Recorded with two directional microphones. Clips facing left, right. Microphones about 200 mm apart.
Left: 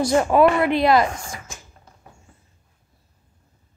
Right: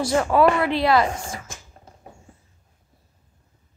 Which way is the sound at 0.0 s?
20° left (ahead or behind).